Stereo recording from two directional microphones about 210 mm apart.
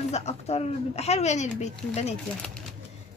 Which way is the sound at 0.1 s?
30° left (ahead or behind).